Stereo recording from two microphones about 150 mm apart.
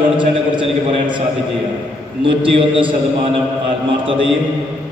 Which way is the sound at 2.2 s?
35° right (ahead or behind).